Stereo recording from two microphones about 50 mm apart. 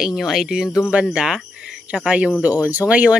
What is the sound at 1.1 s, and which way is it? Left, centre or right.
Cricket, centre.